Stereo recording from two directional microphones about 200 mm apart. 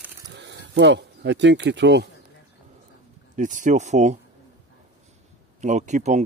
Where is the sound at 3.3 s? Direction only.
40° right (ahead or behind).